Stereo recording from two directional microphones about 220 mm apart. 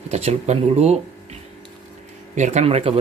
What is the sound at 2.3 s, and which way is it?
Speech, 30° right (ahead or behind).